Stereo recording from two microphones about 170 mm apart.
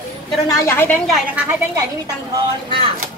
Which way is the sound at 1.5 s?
20° right (ahead or behind).